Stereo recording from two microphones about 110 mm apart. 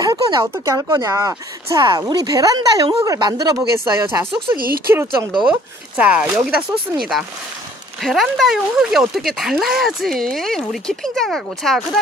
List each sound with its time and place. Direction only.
0.0 s a sound: 40° right (ahead or behind)
0.7 s speech: 30° right (ahead or behind)
1.8 s speech: 40° right (ahead or behind); by 4.3 s 25° right (ahead or behind)
5.0 s speech: 45° right (ahead or behind)
5.9 s speech: 10° right (ahead or behind); by 12.0 s 5° left (ahead or behind)